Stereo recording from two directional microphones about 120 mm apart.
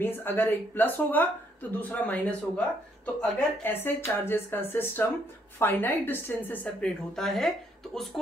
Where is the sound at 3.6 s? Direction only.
15° left (ahead or behind).